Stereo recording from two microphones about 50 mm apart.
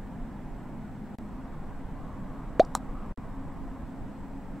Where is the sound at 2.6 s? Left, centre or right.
Centre.